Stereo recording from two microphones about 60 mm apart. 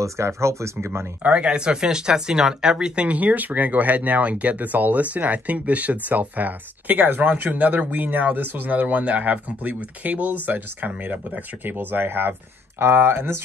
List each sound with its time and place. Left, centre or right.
0.0 s speech: right
1.2 s speech: centre; by 13.4 s right